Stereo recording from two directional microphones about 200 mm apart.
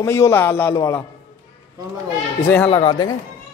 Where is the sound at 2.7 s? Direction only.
25° left (ahead or behind).